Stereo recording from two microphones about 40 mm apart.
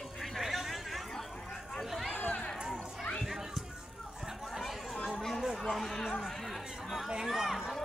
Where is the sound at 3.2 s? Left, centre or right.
Centre.